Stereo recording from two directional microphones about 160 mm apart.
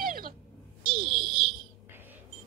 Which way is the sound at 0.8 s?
30° right (ahead or behind).